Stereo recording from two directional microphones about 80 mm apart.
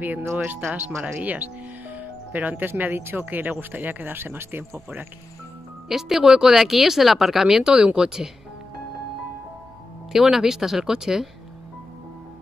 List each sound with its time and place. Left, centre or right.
0.0 s speech: right
5.9 s speech: centre
10.1 s speech: centre